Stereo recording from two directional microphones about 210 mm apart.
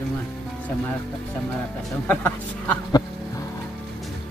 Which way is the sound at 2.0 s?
10° left (ahead or behind).